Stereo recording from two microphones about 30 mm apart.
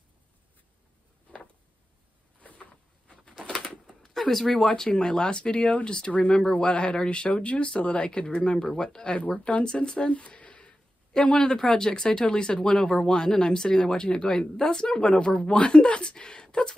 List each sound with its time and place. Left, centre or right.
3.8 s a sound: centre
4.2 s speech: centre
4.7 s speech: left
9.0 s speech: left